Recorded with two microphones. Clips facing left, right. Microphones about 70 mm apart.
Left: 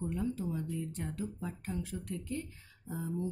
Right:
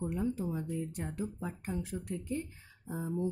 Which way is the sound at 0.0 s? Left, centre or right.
Centre.